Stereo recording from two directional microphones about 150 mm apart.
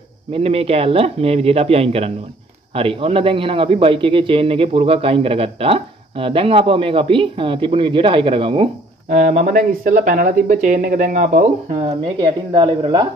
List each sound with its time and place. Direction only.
0.3 s a man's voice: 40° right (ahead or behind)
9.1 s speech: 55° right (ahead or behind)
11.8 s speech: 30° right (ahead or behind)